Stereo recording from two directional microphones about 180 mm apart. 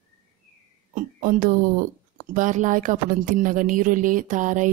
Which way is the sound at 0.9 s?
45° right (ahead or behind).